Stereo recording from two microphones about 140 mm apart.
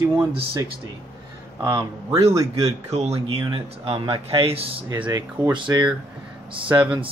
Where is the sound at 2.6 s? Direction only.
50° right (ahead or behind).